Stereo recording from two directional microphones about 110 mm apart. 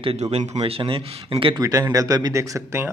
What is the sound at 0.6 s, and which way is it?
Speech, 60° right (ahead or behind).